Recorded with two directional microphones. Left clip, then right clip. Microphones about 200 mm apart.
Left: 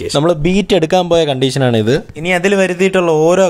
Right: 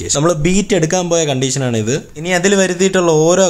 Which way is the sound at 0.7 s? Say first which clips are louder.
Left 5 dB; 40° left (ahead or behind).